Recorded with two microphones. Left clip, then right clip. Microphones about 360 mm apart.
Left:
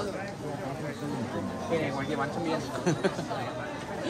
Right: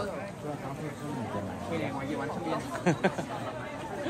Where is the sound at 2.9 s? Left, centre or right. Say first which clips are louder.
Right 1 dB; right.